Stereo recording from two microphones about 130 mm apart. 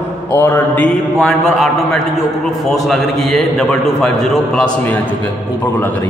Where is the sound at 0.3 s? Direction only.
15° left (ahead or behind).